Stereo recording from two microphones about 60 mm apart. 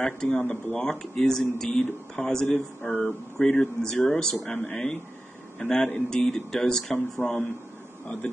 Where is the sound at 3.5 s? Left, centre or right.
Centre.